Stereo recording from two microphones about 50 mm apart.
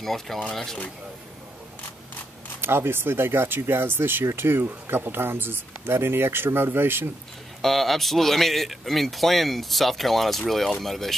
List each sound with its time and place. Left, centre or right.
0.0 s speech: centre
0.4 s speech: centre
2.6 s speech: right
7.6 s speech: centre